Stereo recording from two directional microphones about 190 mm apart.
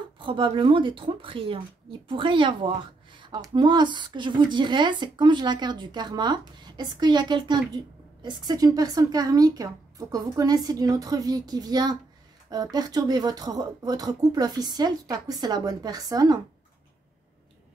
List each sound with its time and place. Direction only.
0.2 s speech: 25° right (ahead or behind)